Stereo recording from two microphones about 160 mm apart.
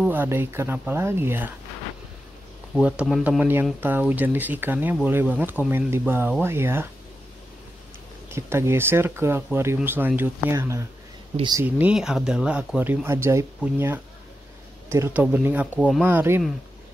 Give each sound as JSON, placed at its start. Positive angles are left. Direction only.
{"t": 0.0, "sound": "speech", "side_deg": -10}
{"t": 2.7, "sound": "speech", "side_deg": -5}
{"t": 8.3, "sound": "speech", "side_deg": -15}
{"t": 11.3, "sound": "speech", "side_deg": -25}
{"t": 11.6, "sound": "speech", "side_deg": -5}